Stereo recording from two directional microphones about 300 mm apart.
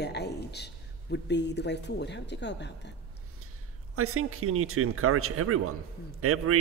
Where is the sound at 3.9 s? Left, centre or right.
Right.